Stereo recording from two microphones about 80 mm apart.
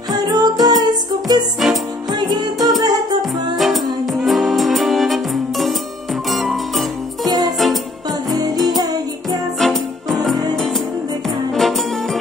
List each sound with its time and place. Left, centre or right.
0.1 s music: right
3.5 s music: centre
7.2 s music: right
7.5 s music: centre
8.6 s music: right
9.6 s music: centre